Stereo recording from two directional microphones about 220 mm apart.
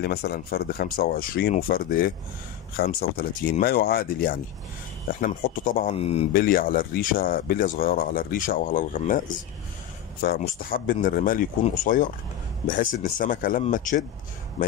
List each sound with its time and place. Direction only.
0.0 s speech: 45° left (ahead or behind)
5.9 s speech: 25° left (ahead or behind)
6.3 s speech: 40° left (ahead or behind)
10.4 s speech: 40° left (ahead or behind)